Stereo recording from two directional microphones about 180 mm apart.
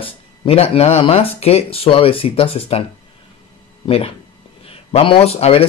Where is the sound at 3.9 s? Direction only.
35° left (ahead or behind).